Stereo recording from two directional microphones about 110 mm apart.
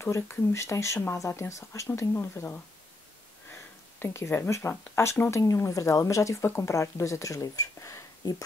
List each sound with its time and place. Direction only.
0.0 s speech: 25° left (ahead or behind)